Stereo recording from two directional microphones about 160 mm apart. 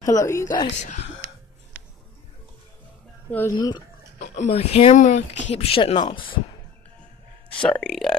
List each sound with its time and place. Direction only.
0.0 s speech: 20° left (ahead or behind)
3.3 s speech: 10° left (ahead or behind)
3.5 s speech: 25° left (ahead or behind)
4.4 s speech: 40° left (ahead or behind)
7.7 s speech: 5° left (ahead or behind)